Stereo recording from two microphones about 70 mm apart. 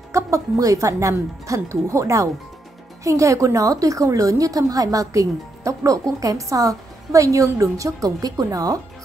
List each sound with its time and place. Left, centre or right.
0.1 s a woman's voice: right